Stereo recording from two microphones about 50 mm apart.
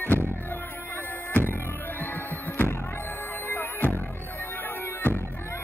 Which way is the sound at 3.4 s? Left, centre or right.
Left.